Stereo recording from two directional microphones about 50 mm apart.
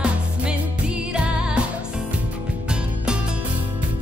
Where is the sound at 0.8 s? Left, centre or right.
Right.